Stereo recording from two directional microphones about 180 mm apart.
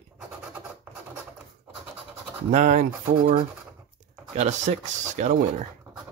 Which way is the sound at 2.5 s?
45° right (ahead or behind).